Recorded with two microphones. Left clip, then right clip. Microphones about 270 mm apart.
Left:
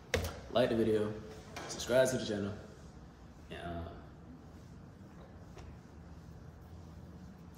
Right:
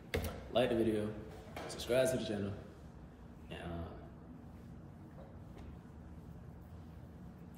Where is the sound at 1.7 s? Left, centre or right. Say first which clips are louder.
Left 3 dB; centre.